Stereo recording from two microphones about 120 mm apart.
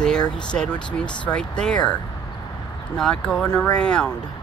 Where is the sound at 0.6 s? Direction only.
10° left (ahead or behind).